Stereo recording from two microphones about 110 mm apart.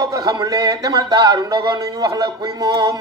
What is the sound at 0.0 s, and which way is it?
Speech, 35° right (ahead or behind).